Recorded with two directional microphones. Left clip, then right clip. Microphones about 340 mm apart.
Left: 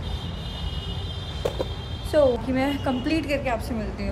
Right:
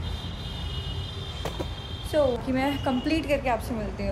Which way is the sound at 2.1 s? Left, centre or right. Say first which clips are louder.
Left 4 dB; centre.